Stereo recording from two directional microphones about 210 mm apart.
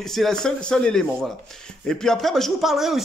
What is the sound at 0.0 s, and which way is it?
Speech, centre (ahead or behind).